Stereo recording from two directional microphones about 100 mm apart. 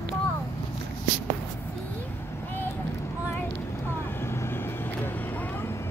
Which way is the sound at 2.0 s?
20° left (ahead or behind).